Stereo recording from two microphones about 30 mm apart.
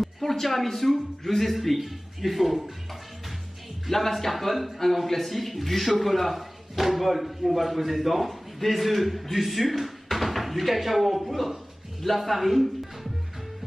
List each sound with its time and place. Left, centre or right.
0.2 s a man's voice: centre
3.9 s a man's voice: centre